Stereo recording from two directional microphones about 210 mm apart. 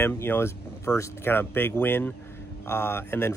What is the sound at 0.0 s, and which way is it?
Speech, 10° left (ahead or behind).